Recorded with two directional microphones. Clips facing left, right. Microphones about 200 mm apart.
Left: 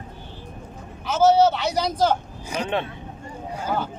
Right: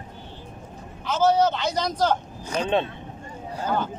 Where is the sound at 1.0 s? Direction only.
5° left (ahead or behind).